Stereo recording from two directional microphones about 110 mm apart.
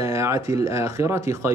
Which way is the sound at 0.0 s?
25° right (ahead or behind).